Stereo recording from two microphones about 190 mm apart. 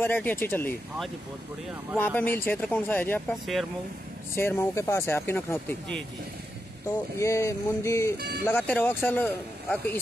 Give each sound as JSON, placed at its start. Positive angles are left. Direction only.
{"t": 0.0, "sound": "speech", "side_deg": 10}
{"t": 2.0, "sound": "speech", "side_deg": 10}
{"t": 4.4, "sound": "speech", "side_deg": 10}
{"t": 7.2, "sound": "speech", "side_deg": 15}